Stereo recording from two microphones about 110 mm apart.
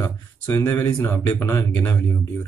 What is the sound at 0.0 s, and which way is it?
Speech, 25° left (ahead or behind).